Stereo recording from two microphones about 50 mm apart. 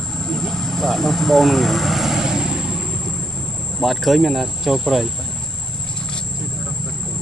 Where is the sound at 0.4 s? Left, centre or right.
Centre.